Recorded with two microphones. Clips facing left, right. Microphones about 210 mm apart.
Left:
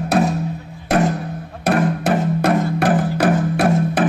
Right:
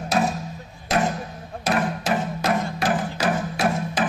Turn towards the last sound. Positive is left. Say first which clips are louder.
# left 7 dB
turn(degrees=60)  # may be behind; listen again after turning